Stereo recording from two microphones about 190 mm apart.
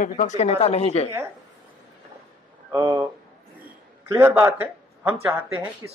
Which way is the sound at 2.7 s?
15° right (ahead or behind).